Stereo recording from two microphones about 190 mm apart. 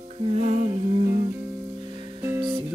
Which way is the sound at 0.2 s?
35° right (ahead or behind).